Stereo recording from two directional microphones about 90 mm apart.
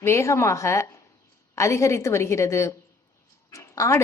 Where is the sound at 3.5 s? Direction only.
35° left (ahead or behind).